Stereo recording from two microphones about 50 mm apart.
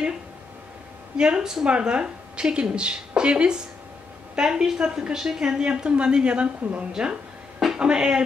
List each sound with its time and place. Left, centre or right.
1.1 s a woman's voice: centre